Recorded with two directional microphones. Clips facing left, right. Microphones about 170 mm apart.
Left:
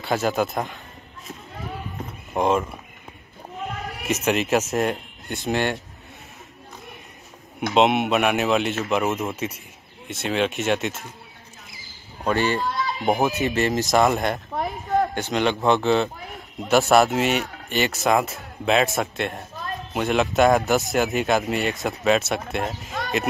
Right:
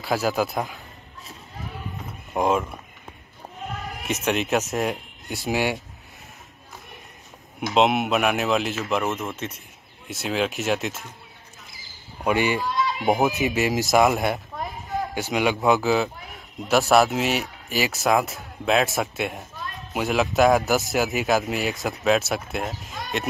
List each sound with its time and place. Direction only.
0.0 s a man's voice: centre (ahead or behind)
2.3 s a man's voice: centre (ahead or behind)
4.0 s speech: centre (ahead or behind)
7.7 s a man's voice: centre (ahead or behind)
12.3 s a man's voice: 10° right (ahead or behind)
19.5 s a sound: 45° left (ahead or behind)
19.9 s a man's voice: centre (ahead or behind)